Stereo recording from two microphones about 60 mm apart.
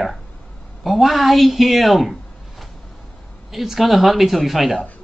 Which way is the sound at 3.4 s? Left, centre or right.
Centre.